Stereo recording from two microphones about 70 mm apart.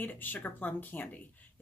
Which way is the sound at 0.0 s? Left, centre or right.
Left.